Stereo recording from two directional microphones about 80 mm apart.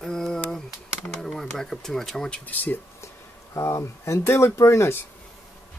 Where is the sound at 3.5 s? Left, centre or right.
Left.